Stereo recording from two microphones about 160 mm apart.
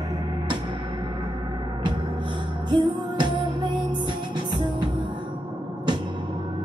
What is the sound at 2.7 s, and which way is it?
Music, 30° right (ahead or behind).